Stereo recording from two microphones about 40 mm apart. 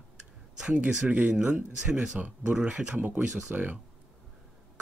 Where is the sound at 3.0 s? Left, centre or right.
Right.